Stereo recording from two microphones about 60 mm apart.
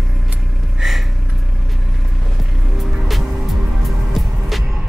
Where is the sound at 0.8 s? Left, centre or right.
Centre.